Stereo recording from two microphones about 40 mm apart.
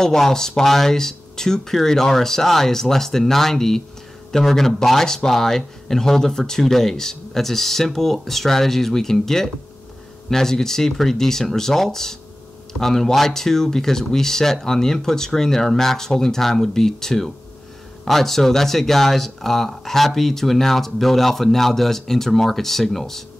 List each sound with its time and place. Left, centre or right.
0.0 s speech: centre